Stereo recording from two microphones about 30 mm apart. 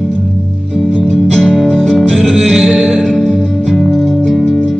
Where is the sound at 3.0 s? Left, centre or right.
Centre.